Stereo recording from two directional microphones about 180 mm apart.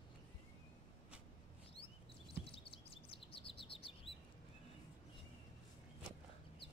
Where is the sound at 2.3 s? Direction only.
30° left (ahead or behind).